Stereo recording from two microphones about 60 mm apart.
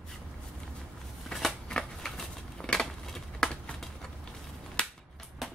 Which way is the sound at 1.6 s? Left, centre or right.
Centre.